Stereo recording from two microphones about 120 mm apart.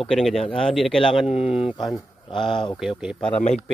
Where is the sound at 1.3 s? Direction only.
60° left (ahead or behind).